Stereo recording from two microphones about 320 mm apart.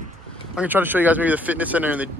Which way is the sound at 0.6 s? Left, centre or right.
Centre.